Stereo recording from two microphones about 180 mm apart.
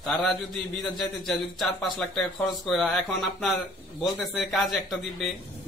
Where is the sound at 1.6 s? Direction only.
Centre (ahead or behind).